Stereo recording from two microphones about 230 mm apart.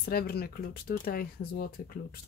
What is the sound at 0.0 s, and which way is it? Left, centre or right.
Speech, left.